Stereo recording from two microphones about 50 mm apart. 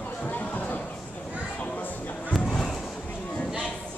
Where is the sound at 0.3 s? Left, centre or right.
Left.